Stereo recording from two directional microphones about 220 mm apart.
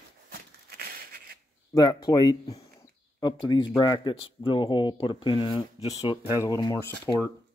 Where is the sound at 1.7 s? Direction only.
15° left (ahead or behind).